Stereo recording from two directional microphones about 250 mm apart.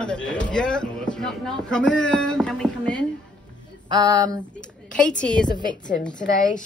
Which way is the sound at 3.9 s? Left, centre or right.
Centre.